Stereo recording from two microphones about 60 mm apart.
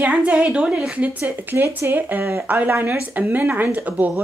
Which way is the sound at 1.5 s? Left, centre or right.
Right.